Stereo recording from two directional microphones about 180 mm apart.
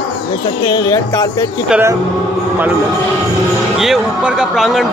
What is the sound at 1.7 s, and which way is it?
Speech, 10° right (ahead or behind).